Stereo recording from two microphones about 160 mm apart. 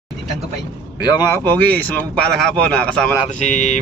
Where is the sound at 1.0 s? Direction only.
25° left (ahead or behind); by 3.2 s 5° left (ahead or behind).